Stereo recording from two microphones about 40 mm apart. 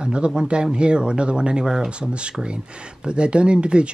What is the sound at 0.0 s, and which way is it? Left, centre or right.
Speech, right.